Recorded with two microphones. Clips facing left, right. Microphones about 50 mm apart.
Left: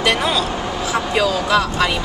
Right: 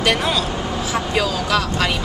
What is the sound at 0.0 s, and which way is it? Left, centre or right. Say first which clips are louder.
Speech: left 1 dB; centre.